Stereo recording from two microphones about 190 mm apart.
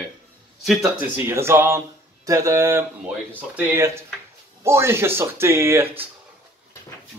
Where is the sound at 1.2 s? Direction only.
15° right (ahead or behind).